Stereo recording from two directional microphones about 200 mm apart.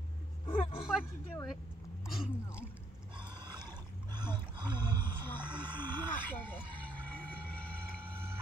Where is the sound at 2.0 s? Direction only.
Centre (ahead or behind).